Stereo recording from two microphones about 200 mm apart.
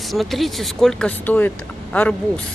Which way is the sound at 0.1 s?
Centre (ahead or behind).